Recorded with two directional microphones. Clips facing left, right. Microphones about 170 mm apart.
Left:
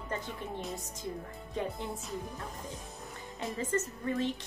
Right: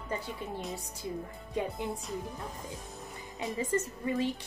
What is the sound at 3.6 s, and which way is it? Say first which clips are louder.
Speech: right 2 dB; 10° right (ahead or behind).